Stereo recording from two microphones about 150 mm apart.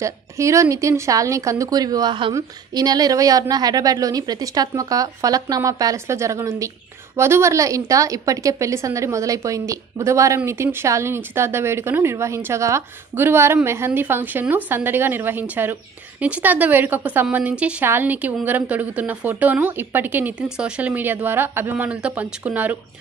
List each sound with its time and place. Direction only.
0.0 s a woman's voice: 20° right (ahead or behind)